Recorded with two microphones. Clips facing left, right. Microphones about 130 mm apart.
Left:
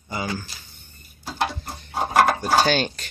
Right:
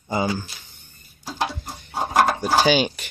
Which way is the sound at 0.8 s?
15° right (ahead or behind).